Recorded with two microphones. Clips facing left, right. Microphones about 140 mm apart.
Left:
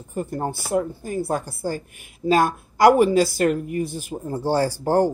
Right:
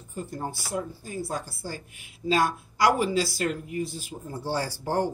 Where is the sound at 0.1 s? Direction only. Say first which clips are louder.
Left 7 dB; 55° left (ahead or behind).